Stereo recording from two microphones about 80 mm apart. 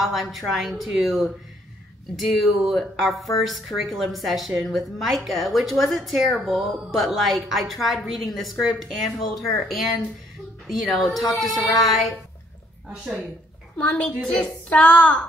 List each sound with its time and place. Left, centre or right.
0.0 s a woman's voice: centre
13.7 s a woman's voice: centre